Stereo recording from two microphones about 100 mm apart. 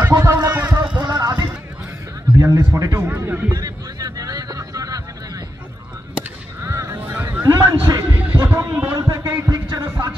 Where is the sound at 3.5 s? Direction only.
40° right (ahead or behind).